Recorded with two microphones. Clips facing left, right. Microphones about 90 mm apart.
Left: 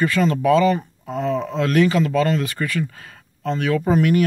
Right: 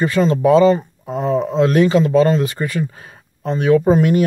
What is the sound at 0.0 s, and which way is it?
Speech, 25° right (ahead or behind).